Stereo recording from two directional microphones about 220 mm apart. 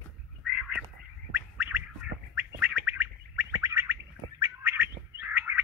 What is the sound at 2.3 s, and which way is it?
Bird, 10° right (ahead or behind).